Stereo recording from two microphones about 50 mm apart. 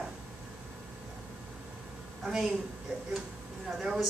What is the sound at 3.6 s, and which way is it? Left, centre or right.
Speech, centre.